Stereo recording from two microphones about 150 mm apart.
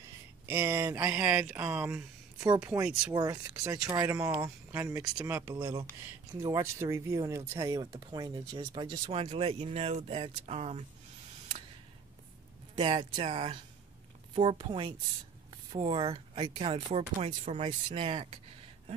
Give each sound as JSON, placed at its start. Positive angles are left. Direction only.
{"t": 0.5, "sound": "speech", "side_deg": -20}
{"t": 2.8, "sound": "speech", "side_deg": -10}
{"t": 3.2, "sound": "speech", "side_deg": -25}
{"t": 12.9, "sound": "speech", "side_deg": -45}